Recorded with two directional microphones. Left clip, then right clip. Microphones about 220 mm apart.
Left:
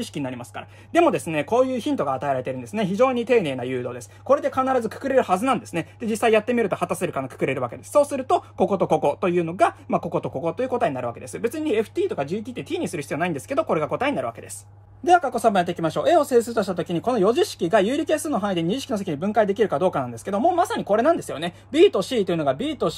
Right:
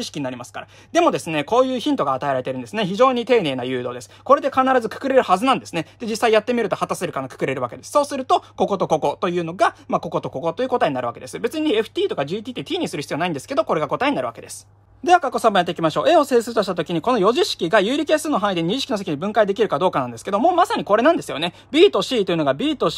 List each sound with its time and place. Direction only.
0.1 s speech: 10° right (ahead or behind)